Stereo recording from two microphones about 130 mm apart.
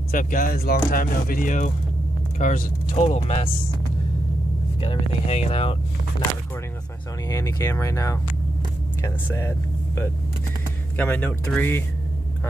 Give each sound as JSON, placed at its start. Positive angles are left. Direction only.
{"t": 0.1, "sound": "speech", "side_deg": 90}
{"t": 2.3, "sound": "speech", "side_deg": 70}
{"t": 2.9, "sound": "speech", "side_deg": 50}
{"t": 4.7, "sound": "speech", "side_deg": 50}
{"t": 7.2, "sound": "speech", "side_deg": 25}